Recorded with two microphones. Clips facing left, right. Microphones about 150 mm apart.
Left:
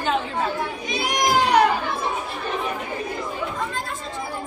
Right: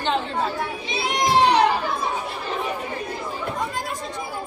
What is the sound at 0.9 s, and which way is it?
Children playing, 30° right (ahead or behind).